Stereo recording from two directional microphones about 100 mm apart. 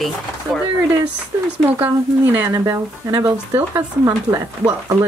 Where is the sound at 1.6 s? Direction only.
20° right (ahead or behind); by 5.1 s 35° right (ahead or behind).